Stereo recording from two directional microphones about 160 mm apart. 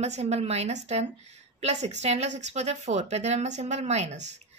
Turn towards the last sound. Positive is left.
turn(degrees=-45)  # may be behind; listen again after turning